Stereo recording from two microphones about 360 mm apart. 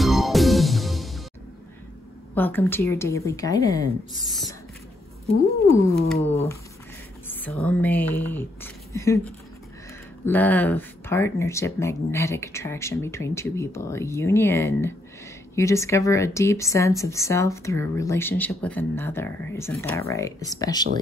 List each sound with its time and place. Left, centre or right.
0.0 s music: centre
2.3 s speech: centre
5.9 s speech: centre
6.3 s speech: centre
7.2 s speech: centre